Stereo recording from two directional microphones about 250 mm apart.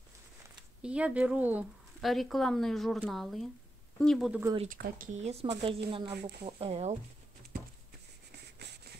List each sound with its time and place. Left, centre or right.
0.8 s speech: centre
4.6 s speech: right
8.3 s a sound: right